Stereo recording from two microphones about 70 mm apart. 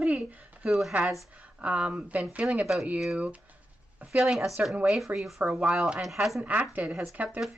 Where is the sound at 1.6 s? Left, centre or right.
Centre.